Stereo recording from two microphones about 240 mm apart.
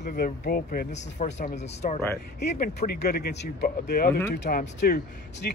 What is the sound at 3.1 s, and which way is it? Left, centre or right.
Speech, left.